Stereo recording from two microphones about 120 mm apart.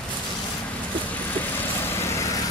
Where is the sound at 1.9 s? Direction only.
20° left (ahead or behind).